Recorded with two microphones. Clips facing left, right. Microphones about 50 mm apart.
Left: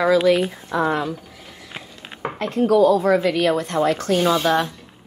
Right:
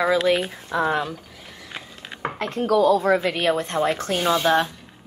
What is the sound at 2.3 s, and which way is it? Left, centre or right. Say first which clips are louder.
Speech: left 5 dB; right.